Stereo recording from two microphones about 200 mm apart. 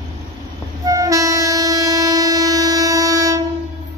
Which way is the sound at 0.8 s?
15° right (ahead or behind).